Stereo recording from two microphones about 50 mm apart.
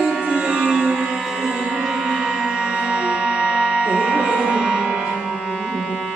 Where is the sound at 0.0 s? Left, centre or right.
Centre.